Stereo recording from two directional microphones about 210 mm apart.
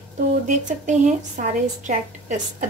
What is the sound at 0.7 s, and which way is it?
A woman's voice, 35° right (ahead or behind).